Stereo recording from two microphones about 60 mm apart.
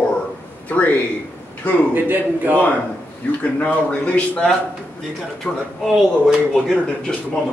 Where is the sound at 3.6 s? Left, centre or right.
Centre.